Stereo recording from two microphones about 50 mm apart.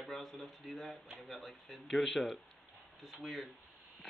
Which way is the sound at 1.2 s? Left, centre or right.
Centre.